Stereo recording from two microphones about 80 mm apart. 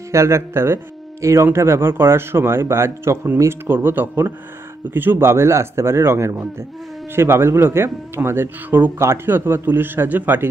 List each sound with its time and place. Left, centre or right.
0.1 s speech: right